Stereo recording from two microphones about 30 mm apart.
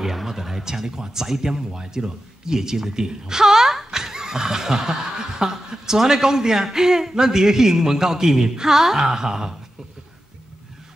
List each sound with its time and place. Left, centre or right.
0.0 s speech: centre